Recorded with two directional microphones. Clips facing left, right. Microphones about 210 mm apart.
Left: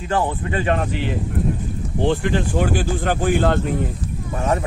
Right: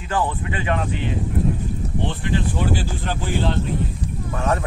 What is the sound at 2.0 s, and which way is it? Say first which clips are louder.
Speech: left 6 dB; 50° left (ahead or behind).